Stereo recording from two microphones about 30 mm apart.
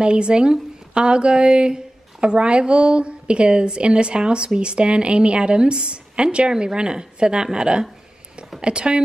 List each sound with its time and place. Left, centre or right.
0.0 s a woman's voice: right